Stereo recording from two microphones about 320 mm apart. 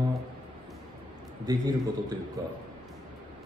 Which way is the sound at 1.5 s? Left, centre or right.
Centre.